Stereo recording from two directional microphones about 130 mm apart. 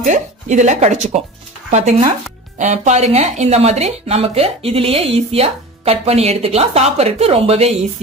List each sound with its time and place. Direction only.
0.0 s speech: 70° right (ahead or behind); by 7.8 s 50° right (ahead or behind)